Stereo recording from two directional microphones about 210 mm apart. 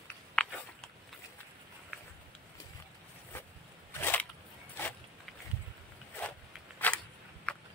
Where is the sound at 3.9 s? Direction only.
10° left (ahead or behind).